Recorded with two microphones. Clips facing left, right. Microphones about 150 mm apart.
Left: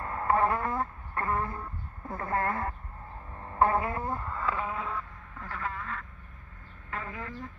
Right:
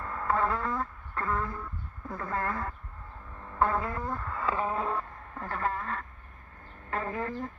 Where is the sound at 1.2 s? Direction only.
20° left (ahead or behind).